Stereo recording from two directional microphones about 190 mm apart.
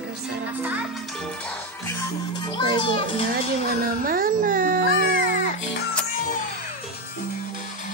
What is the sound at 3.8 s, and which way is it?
Speech, 50° right (ahead or behind).